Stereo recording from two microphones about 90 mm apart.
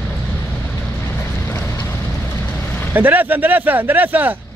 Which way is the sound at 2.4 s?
20° left (ahead or behind).